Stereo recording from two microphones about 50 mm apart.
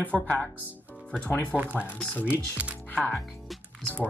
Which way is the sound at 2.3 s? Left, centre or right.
Right.